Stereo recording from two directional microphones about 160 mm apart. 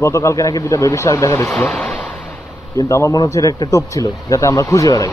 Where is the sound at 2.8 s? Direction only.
20° left (ahead or behind).